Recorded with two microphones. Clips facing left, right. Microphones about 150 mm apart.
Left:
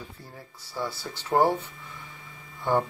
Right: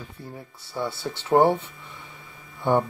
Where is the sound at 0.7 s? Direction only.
25° right (ahead or behind).